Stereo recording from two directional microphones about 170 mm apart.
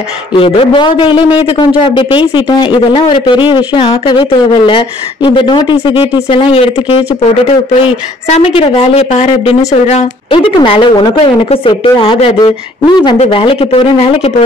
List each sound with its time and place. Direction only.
0.4 s speech: 30° left (ahead or behind)